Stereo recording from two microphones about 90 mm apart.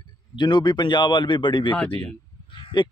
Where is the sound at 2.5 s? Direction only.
60° left (ahead or behind).